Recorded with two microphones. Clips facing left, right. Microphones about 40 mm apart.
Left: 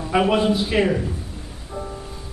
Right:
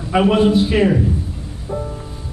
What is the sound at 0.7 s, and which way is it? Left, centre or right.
Speech, centre.